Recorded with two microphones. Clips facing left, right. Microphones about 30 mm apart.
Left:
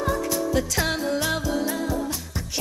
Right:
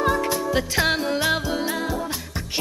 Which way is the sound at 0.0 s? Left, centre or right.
Right.